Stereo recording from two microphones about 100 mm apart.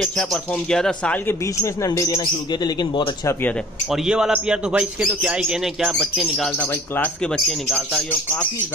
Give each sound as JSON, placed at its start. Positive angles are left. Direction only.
{"t": 0.0, "sound": "speech", "side_deg": 5}
{"t": 1.4, "sound": "a man's voice", "side_deg": 30}
{"t": 3.9, "sound": "a man's voice", "side_deg": -5}
{"t": 6.6, "sound": "speech", "side_deg": 15}
{"t": 7.3, "sound": "speech", "side_deg": 5}
{"t": 8.1, "sound": "speech", "side_deg": 20}